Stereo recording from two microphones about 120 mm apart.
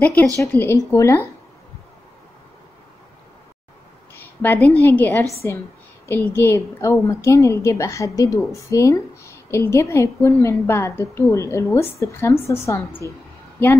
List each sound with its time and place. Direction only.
0.0 s a woman's voice: 15° left (ahead or behind)
4.1 s a woman's voice: 15° left (ahead or behind)